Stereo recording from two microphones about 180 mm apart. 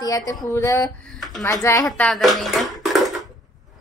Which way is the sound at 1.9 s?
Centre (ahead or behind).